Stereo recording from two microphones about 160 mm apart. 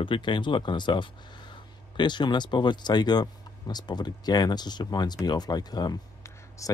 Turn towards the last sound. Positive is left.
turn(degrees=25)  # may be behind; listen again after turning